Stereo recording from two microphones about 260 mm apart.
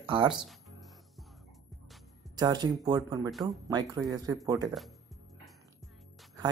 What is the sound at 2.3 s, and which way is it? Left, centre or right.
Speech, centre.